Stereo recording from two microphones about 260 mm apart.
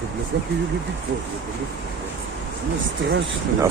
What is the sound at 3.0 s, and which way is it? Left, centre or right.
Speech, right.